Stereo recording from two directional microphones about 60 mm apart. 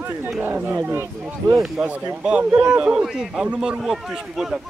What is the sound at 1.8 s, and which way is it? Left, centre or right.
A man's voice, right.